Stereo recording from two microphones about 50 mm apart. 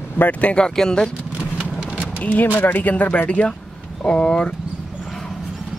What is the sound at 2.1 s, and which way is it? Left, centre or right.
Speech, left.